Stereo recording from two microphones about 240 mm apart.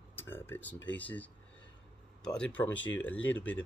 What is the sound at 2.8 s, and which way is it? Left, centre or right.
Speech, left.